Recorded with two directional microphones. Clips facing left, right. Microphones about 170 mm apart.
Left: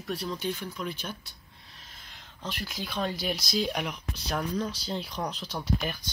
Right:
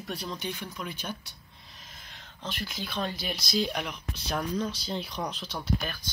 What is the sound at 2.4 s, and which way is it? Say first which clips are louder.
Speech: even; 5° left (ahead or behind).